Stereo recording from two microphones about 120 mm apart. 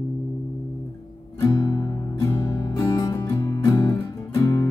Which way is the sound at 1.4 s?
30° left (ahead or behind).